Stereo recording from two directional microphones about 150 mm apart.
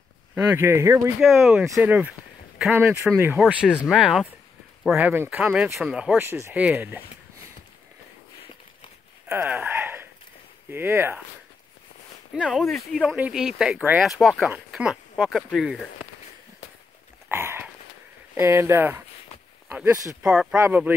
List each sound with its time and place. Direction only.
0.3 s speech: 15° right (ahead or behind)
1.2 s speech: centre (ahead or behind)
1.5 s speech: 10° right (ahead or behind)
9.3 s a sound: 15° right (ahead or behind)
10.7 s speech: 15° right (ahead or behind)
12.4 s speech: centre (ahead or behind)
17.3 s a sound: 15° right (ahead or behind)
18.3 s speech: 15° right (ahead or behind)
20.2 s speech: 5° right (ahead or behind)